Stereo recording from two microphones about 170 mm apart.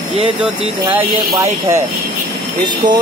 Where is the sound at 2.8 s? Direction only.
25° right (ahead or behind).